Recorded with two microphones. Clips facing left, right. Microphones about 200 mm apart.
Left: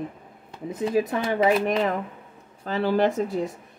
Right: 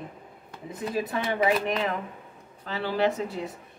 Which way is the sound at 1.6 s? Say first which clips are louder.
Left 4 dB; 45° left (ahead or behind).